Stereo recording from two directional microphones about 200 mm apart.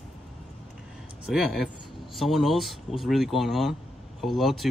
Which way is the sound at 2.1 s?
Centre (ahead or behind).